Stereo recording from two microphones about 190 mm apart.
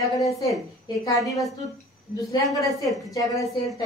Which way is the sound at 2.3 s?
15° left (ahead or behind).